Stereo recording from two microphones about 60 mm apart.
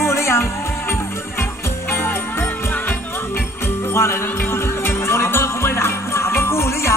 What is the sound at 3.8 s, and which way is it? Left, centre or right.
Music, left.